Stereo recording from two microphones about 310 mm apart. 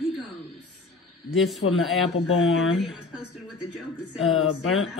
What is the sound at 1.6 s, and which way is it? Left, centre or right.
Speech, left.